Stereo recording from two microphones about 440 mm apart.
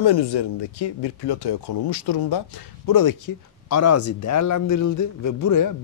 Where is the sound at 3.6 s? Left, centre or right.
Left.